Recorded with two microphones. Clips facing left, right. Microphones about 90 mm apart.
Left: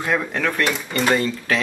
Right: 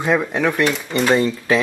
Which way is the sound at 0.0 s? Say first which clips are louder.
Right 4 dB; 15° right (ahead or behind).